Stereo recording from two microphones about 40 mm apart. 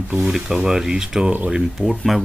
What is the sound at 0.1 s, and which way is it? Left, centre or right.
Speech, centre.